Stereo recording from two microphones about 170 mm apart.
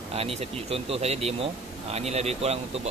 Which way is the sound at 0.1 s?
35° right (ahead or behind).